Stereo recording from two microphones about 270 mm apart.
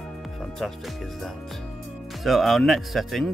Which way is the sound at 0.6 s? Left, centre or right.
Centre.